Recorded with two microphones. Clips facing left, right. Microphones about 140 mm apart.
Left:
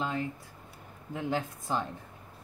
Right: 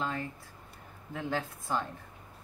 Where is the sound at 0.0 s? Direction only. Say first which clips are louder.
Left 2 dB; 15° left (ahead or behind).